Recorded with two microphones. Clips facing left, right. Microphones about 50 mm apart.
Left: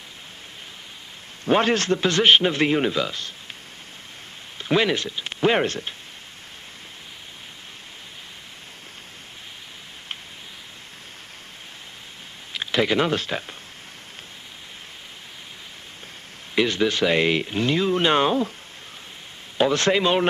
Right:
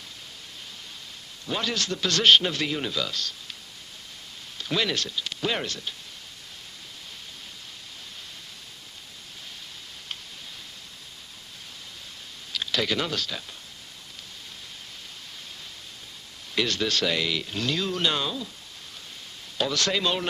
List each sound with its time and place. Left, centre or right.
1.4 s a man's voice: left
4.6 s speech: left
12.5 s speech: left
16.5 s a man's voice: left
17.1 s speech: left
17.6 s a man's voice: left
19.6 s a man's voice: left